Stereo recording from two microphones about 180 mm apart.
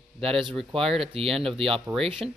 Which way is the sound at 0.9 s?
30° right (ahead or behind).